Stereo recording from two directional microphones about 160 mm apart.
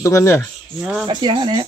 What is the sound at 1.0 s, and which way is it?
Speech, 30° right (ahead or behind).